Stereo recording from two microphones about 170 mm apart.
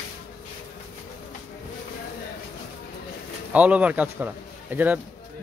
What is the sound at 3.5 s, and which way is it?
Speech, 10° right (ahead or behind).